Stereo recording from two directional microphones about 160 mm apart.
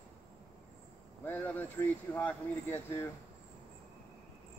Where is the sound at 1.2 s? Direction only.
10° left (ahead or behind).